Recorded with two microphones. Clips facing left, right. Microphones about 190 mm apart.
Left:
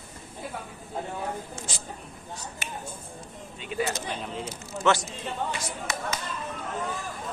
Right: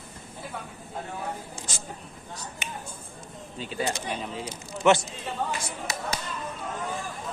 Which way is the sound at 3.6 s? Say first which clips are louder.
Even; 35° right (ahead or behind).